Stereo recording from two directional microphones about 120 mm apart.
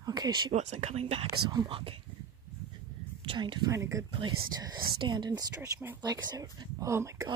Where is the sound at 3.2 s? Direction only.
40° right (ahead or behind).